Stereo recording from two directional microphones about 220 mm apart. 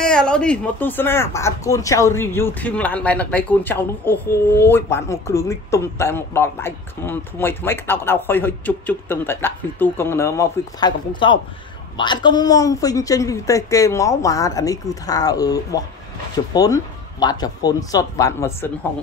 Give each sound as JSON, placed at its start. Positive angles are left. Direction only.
{"t": 0.0, "sound": "speech", "side_deg": 5}